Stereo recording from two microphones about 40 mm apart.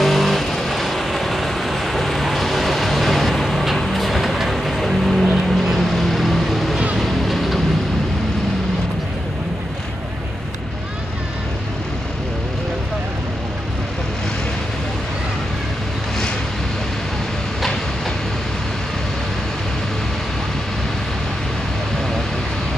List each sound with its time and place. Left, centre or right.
0.0 s vehicle: centre